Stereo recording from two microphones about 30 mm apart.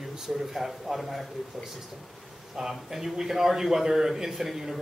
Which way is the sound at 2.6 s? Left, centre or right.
Centre.